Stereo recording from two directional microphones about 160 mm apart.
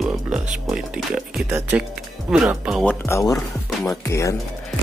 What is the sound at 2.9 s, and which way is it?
Speech, 20° left (ahead or behind).